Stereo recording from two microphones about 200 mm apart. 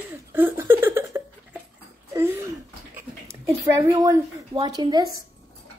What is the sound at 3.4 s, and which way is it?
A woman's voice, 15° right (ahead or behind).